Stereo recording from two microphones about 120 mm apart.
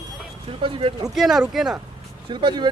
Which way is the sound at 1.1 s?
Centre (ahead or behind).